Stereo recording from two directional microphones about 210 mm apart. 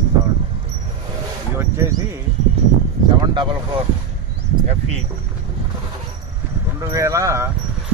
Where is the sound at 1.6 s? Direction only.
15° right (ahead or behind).